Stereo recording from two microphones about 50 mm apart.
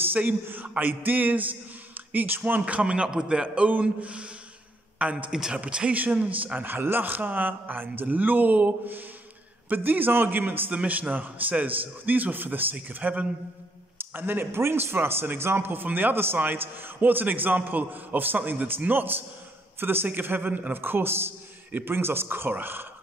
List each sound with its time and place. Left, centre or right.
0.0 s a man's voice: right
2.6 s a man's voice: right
3.4 s a man's voice: right
5.3 s speech: centre
5.6 s a man's voice: right
10.7 s a man's voice: right
14.1 s a man's voice: right